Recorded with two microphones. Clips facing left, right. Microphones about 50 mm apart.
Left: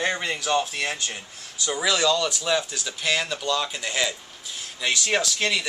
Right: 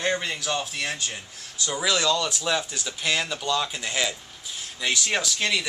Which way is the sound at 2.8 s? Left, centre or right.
Centre.